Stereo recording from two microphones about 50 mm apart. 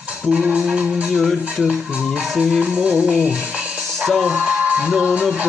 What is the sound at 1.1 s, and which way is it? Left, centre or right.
Music, centre.